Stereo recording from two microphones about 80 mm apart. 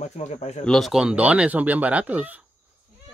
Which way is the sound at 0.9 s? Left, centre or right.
Centre.